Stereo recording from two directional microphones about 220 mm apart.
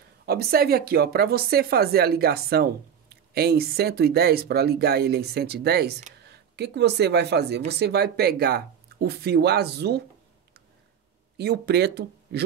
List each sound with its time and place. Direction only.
0.3 s speech: 45° right (ahead or behind)
11.3 s speech: 50° right (ahead or behind)